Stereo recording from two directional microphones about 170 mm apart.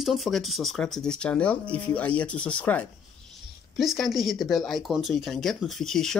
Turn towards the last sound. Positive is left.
turn(degrees=0)  # may be behind; listen again after turning